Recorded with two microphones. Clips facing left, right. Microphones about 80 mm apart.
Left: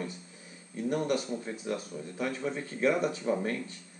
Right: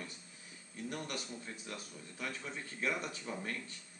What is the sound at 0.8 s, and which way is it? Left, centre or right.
Speech, centre.